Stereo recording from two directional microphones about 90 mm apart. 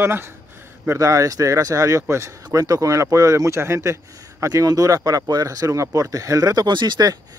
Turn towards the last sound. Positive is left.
turn(degrees=-50)  # may be behind; listen again after turning